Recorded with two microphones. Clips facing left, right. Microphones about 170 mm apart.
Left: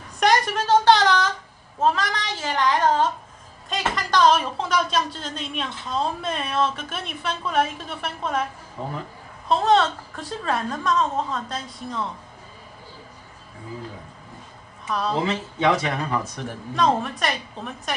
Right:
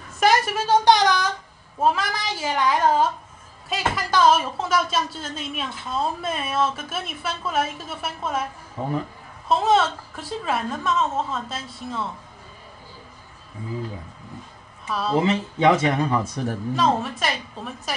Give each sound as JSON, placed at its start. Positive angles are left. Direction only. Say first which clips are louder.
{"t": 0.2, "sound": "a woman's voice", "louder": "even", "side_deg": -5}
{"t": 9.5, "sound": "a woman's voice", "louder": "even", "side_deg": -5}
{"t": 14.9, "sound": "a woman's voice", "louder": "even", "side_deg": -5}
{"t": 15.2, "sound": "speech", "louder": "right 5 dB", "side_deg": -25}
{"t": 16.7, "sound": "a woman's voice", "louder": "left 2 dB", "side_deg": 0}